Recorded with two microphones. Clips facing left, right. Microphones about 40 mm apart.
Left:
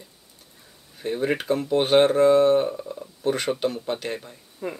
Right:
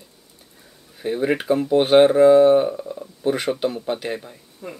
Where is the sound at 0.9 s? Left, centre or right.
Centre.